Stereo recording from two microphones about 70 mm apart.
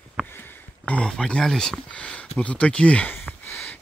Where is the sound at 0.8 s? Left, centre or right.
Centre.